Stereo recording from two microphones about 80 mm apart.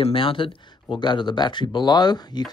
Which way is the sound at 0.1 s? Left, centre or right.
Left.